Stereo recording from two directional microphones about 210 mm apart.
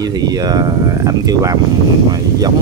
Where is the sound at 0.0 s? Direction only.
20° right (ahead or behind).